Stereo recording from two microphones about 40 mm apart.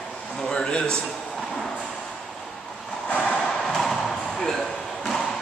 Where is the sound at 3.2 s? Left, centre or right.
Centre.